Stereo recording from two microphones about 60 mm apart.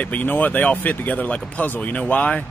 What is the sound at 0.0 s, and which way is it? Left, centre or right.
Speech, left.